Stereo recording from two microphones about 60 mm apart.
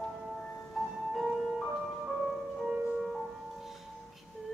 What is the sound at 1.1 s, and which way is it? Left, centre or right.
Music, centre.